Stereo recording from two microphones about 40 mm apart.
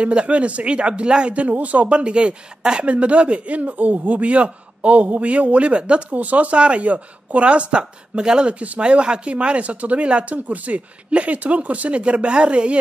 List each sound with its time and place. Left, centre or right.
0.0 s a man's voice: right
1.9 s a man's voice: right